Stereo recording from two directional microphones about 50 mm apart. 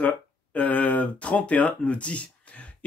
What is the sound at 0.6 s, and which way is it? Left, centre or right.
Speech, left.